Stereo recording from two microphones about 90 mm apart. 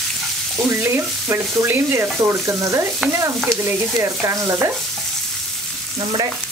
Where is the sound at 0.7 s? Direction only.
25° right (ahead or behind).